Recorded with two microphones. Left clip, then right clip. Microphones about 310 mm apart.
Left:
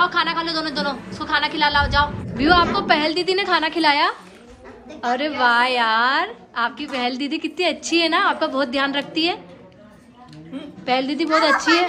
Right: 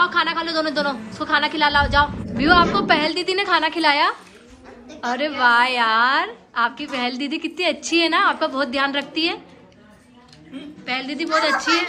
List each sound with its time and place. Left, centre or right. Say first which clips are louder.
0.0 s a woman's voice: even; centre
10.9 s a woman's voice: left 3 dB; centre